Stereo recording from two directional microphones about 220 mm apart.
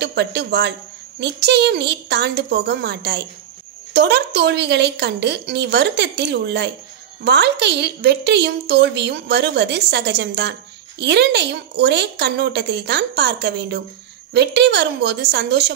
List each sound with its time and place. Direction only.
0.0 s a woman's voice: 50° right (ahead or behind)